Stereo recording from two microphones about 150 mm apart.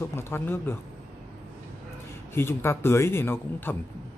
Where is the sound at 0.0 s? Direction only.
15° left (ahead or behind).